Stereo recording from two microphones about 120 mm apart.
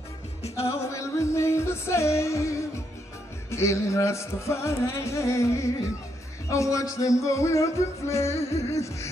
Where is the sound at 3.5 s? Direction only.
25° left (ahead or behind).